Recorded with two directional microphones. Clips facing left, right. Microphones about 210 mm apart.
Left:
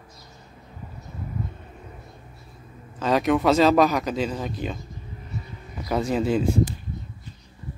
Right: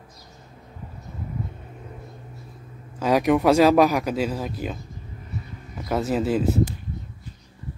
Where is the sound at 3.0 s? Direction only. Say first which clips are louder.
Right 2 dB; 10° right (ahead or behind).